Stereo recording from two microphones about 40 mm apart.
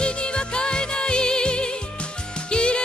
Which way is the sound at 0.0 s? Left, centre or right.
Left.